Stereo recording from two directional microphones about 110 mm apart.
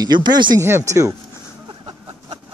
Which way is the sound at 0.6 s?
25° right (ahead or behind).